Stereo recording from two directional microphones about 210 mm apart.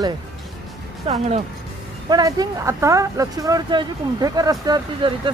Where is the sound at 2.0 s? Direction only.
20° right (ahead or behind).